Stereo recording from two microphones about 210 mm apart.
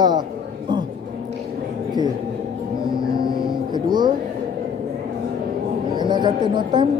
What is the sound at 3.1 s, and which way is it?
Music, 20° right (ahead or behind).